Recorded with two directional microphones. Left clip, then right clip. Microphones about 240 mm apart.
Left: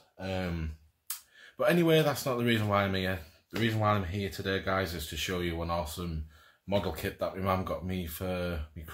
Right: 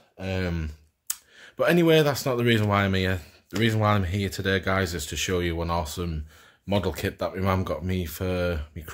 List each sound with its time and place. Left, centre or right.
0.2 s speech: right